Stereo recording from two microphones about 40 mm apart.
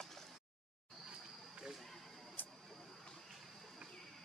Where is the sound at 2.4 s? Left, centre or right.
Left.